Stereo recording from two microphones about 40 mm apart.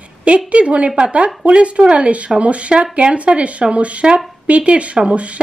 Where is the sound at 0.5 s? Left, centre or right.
Right.